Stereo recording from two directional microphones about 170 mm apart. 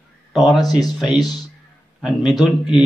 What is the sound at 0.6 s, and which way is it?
Speech, 25° left (ahead or behind).